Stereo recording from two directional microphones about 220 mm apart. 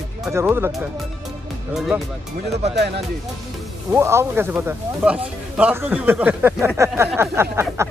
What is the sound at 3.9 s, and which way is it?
Speech, 10° right (ahead or behind).